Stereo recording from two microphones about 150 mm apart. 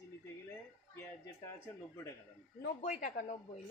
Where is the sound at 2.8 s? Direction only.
55° left (ahead or behind).